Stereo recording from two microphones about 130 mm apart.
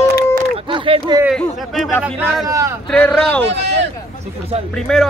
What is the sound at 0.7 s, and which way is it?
Speech, 40° right (ahead or behind).